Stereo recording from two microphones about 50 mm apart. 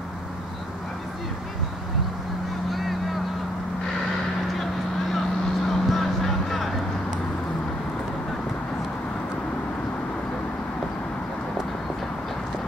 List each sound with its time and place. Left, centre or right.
5.7 s music: centre